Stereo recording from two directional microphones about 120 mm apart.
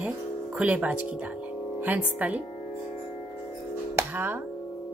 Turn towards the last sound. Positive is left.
turn(degrees=-20)  # may be behind; listen again after turning